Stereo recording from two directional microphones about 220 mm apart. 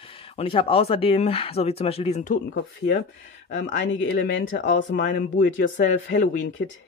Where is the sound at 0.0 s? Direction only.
25° left (ahead or behind).